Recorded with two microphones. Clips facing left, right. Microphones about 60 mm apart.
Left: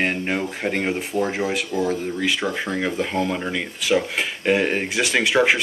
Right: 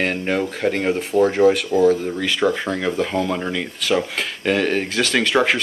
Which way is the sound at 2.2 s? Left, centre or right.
Centre.